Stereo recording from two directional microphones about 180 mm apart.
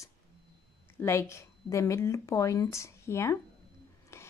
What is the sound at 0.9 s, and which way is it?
A woman's voice, 15° left (ahead or behind).